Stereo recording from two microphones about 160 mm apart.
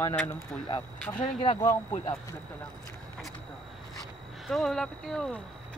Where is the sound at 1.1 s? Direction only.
25° left (ahead or behind).